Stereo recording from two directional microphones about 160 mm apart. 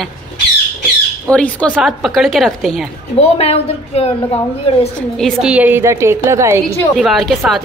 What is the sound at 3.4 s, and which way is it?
Speech, 40° left (ahead or behind).